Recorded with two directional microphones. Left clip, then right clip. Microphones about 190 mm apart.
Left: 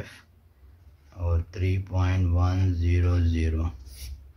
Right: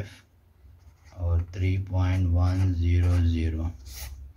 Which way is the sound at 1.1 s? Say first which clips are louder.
Left 3 dB; 20° left (ahead or behind).